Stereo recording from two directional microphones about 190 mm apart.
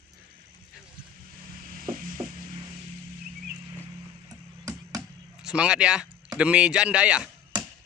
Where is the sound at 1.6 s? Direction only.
45° right (ahead or behind).